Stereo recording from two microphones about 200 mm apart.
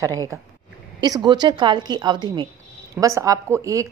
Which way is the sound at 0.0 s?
15° right (ahead or behind).